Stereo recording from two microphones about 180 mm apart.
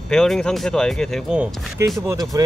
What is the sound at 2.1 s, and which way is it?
Speech, 20° right (ahead or behind).